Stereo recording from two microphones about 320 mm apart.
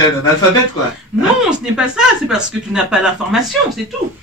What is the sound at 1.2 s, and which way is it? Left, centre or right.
Speech, centre.